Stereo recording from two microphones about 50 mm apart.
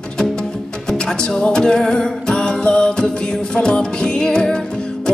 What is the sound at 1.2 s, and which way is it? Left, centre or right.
Music, centre.